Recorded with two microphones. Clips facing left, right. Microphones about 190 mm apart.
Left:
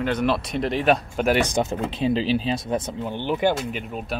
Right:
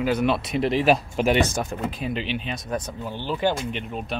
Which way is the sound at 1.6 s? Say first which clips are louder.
Left 5 dB; 25° left (ahead or behind).